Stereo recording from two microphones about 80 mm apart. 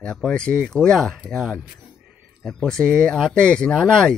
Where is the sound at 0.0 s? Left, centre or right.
Centre.